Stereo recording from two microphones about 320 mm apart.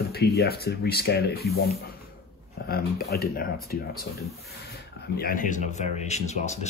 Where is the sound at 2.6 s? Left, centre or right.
Left.